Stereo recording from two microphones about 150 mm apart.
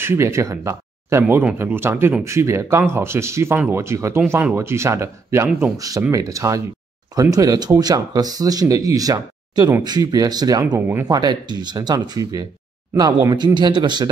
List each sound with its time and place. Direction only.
0.0 s speech: 15° right (ahead or behind)